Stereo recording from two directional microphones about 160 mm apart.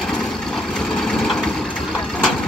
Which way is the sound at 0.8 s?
5° left (ahead or behind).